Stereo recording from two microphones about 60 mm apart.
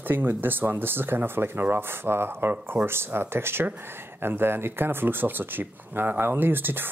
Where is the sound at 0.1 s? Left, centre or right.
Right.